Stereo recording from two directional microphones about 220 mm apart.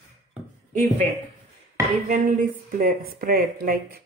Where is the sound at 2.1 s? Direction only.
40° right (ahead or behind).